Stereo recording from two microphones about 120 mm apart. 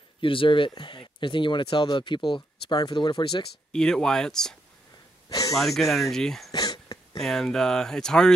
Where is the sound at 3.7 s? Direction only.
5° left (ahead or behind).